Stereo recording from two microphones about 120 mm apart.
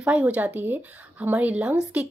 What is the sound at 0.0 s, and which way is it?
Speech, 10° right (ahead or behind).